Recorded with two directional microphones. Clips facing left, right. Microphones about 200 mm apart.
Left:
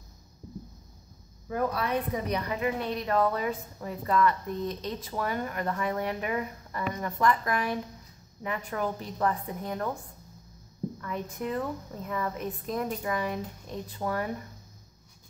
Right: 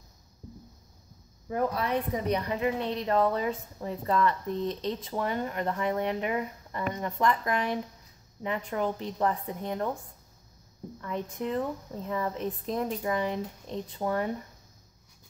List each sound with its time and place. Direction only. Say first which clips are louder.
1.5 s a woman's voice: even; 20° right (ahead or behind)
11.0 s a woman's voice: right 5 dB; 25° right (ahead or behind)